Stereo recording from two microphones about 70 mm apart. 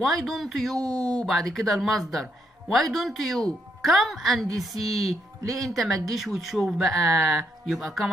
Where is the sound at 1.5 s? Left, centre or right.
Centre.